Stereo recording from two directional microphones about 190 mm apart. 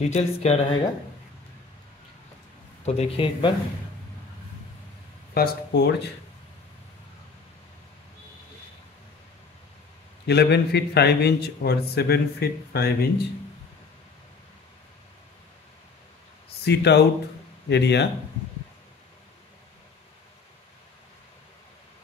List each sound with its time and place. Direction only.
0.0 s speech: 35° left (ahead or behind)
2.8 s speech: 30° left (ahead or behind)
5.3 s a man's voice: 55° left (ahead or behind)
10.2 s a man's voice: 60° left (ahead or behind)
16.6 s a man's voice: 60° left (ahead or behind)